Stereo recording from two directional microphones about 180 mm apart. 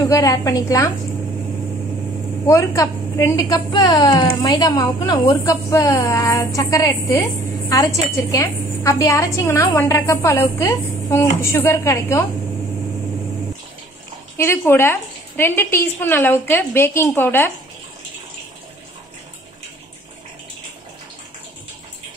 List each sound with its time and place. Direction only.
0.0 s a woman's voice: 20° left (ahead or behind)
2.4 s a woman's voice: 15° left (ahead or behind)
14.3 s a woman's voice: 15° left (ahead or behind)